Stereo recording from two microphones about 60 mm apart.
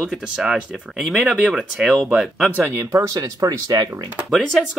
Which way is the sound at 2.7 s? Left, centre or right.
Right.